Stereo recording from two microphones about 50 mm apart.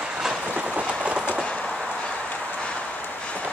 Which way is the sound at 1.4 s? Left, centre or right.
Centre.